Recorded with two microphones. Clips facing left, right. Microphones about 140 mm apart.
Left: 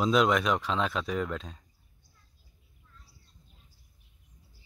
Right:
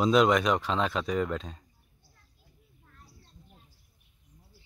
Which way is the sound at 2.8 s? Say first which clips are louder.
Right 4 dB; 65° right (ahead or behind).